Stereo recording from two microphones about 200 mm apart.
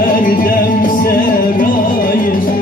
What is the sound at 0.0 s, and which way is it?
Music, 40° left (ahead or behind).